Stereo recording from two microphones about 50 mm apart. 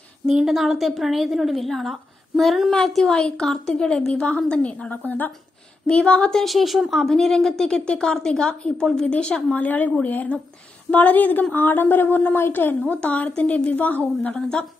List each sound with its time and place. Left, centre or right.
0.3 s a woman's voice: centre; by 5.3 s left
5.9 s a woman's voice: left
6.3 s a woman's voice: centre
7.8 s a woman's voice: left
9.6 s speech: left
12.8 s speech: left
14.3 s a woman's voice: centre